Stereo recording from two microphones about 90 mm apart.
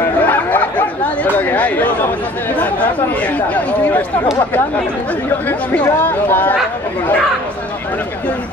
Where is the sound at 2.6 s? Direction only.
15° left (ahead or behind).